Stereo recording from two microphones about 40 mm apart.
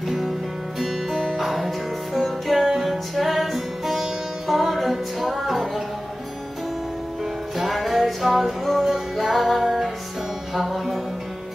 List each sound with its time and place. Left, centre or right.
0.7 s music: centre
7.5 s music: centre